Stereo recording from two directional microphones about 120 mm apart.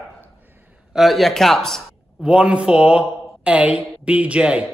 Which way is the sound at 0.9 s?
Centre (ahead or behind).